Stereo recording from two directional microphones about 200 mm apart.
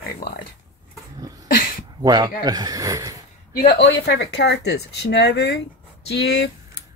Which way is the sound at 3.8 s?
60° left (ahead or behind).